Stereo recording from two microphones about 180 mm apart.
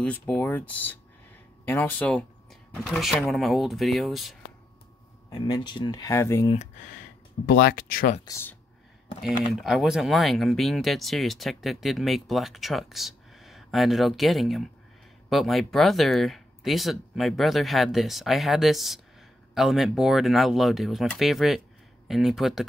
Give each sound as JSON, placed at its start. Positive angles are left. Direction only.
{"t": 0.0, "sound": "speech", "side_deg": 5}
{"t": 5.3, "sound": "speech", "side_deg": 25}
{"t": 6.5, "sound": "speech", "side_deg": 40}
{"t": 7.4, "sound": "speech", "side_deg": 55}
{"t": 8.3, "sound": "speech", "side_deg": 15}
{"t": 9.5, "sound": "speech", "side_deg": 0}